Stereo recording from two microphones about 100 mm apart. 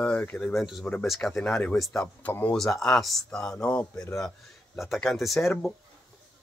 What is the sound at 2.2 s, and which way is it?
Speech, 15° left (ahead or behind).